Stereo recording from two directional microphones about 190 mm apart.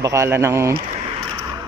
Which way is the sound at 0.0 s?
15° right (ahead or behind).